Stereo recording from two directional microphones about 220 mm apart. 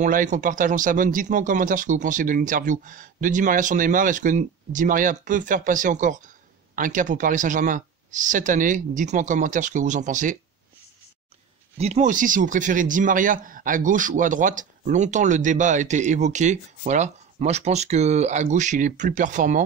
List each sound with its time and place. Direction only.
0.0 s speech: 35° right (ahead or behind)
11.8 s speech: 30° right (ahead or behind)